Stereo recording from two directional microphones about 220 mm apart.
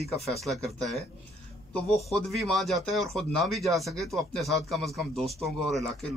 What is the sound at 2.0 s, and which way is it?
Speech, centre (ahead or behind).